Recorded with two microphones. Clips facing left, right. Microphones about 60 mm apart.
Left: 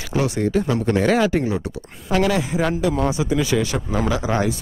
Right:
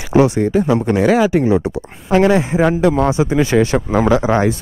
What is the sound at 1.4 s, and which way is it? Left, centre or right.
A man's voice, right.